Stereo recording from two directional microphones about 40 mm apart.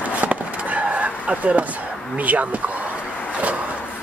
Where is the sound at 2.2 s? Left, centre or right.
Right.